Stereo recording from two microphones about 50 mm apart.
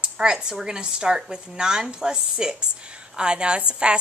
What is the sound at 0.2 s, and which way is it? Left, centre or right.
A woman's voice, centre.